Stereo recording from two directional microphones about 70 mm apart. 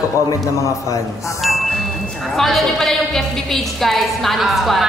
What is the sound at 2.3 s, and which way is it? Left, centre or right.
A woman's voice, centre.